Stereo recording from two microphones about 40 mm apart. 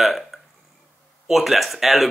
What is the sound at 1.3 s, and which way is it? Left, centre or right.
Speech, centre.